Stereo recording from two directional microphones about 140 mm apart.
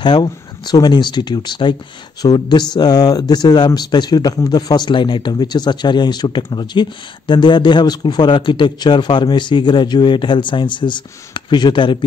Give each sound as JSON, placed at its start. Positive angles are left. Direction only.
{"t": 0.0, "sound": "speech", "side_deg": 30}